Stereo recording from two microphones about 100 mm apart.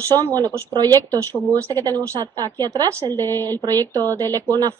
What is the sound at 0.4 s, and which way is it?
Speech, 40° right (ahead or behind).